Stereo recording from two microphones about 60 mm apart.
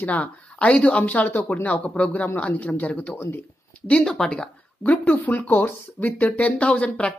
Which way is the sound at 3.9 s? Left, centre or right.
Centre.